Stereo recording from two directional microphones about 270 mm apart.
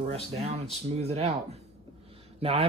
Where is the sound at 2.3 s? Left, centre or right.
Right.